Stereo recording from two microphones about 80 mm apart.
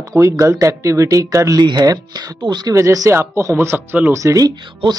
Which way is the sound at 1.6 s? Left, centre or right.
Right.